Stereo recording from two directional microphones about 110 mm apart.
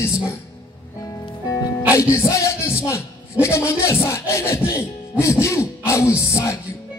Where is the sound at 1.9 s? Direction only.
30° left (ahead or behind).